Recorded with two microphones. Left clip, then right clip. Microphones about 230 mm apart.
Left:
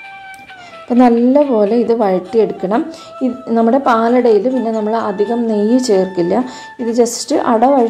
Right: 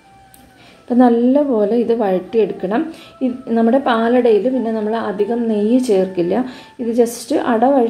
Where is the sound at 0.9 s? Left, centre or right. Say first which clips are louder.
Left 2 dB; left.